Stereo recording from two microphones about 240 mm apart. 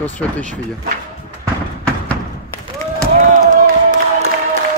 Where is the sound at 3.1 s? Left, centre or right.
Right.